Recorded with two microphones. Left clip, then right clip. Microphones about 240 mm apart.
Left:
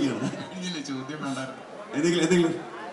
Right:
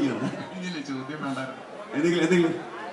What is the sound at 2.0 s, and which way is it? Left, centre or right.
Speech, centre.